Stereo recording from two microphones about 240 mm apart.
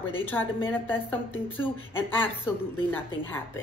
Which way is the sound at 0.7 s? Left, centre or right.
Centre.